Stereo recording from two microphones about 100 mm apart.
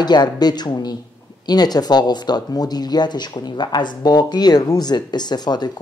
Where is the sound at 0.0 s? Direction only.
45° left (ahead or behind).